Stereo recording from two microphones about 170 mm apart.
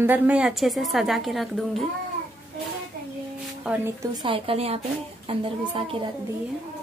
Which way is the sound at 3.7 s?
5° right (ahead or behind).